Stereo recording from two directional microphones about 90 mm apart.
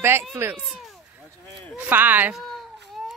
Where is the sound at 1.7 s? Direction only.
20° right (ahead or behind).